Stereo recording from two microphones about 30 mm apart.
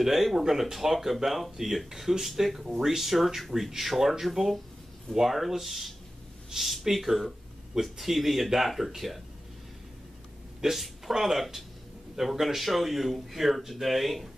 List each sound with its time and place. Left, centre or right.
0.0 s speech: centre
10.6 s speech: centre